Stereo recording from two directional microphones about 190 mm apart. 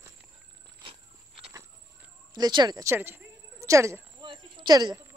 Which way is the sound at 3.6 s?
15° right (ahead or behind).